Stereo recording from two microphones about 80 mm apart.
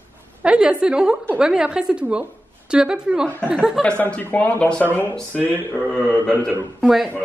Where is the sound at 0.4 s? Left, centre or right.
Centre.